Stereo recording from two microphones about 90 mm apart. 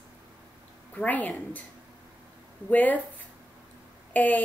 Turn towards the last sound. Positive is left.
turn(degrees=20)  # may be behind; listen again after turning